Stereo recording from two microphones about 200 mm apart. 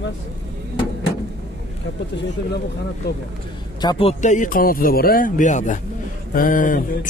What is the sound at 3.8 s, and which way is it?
Speech, 25° left (ahead or behind).